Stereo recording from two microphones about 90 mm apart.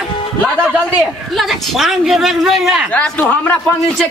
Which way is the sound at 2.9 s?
15° left (ahead or behind).